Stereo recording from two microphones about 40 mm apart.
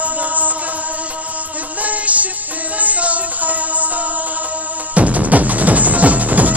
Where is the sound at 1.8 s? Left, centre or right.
Right.